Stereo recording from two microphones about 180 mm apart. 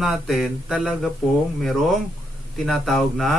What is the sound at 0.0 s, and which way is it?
Speech, centre (ahead or behind).